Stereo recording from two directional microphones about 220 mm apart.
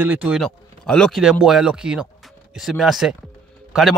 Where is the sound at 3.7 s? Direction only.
Centre (ahead or behind).